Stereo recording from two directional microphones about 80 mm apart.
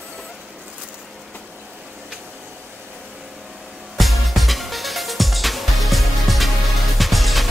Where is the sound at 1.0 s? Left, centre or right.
Centre.